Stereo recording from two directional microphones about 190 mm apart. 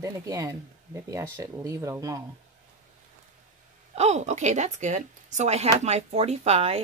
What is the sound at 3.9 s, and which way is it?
Speech, 35° right (ahead or behind).